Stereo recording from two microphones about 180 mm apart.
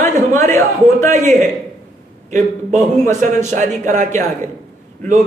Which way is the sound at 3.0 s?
40° right (ahead or behind).